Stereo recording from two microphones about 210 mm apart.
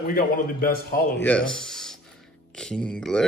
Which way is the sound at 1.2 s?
5° left (ahead or behind).